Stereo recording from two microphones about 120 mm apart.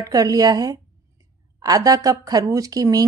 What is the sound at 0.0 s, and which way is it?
A woman's voice, 30° right (ahead or behind).